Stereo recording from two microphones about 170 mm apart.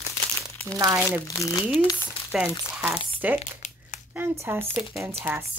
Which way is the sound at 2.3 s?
10° right (ahead or behind).